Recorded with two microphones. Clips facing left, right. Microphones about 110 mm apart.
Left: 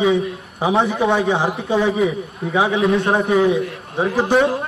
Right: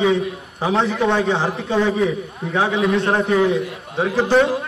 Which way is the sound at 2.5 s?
Centre (ahead or behind).